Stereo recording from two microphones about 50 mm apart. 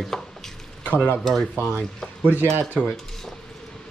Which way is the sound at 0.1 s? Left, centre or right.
Centre.